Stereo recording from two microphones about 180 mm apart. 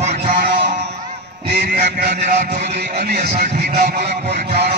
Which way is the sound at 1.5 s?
70° right (ahead or behind).